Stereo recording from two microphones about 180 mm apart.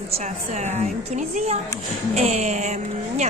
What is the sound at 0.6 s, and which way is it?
A woman's voice, 40° right (ahead or behind).